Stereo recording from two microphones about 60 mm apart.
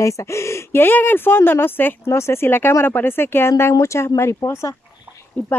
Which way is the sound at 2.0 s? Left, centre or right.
Left.